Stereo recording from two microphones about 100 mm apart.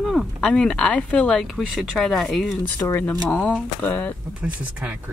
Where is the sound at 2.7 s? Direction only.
15° left (ahead or behind).